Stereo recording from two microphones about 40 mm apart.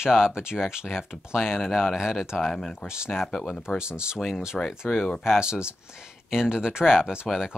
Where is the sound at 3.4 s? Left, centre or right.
Left.